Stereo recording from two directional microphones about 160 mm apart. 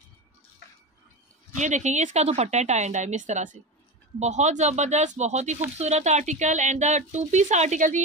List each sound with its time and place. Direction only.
1.6 s speech: 50° right (ahead or behind)